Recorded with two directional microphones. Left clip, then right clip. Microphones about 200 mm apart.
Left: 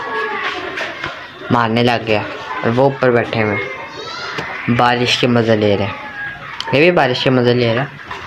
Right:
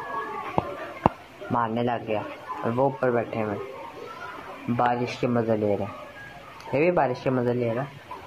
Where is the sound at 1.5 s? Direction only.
30° left (ahead or behind).